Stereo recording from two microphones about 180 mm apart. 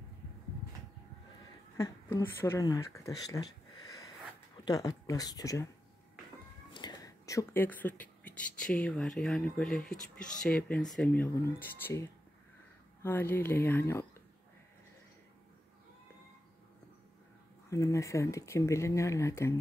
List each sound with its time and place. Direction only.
1.8 s speech: 15° left (ahead or behind)
6.7 s speech: 25° left (ahead or behind)
17.6 s speech: 20° left (ahead or behind)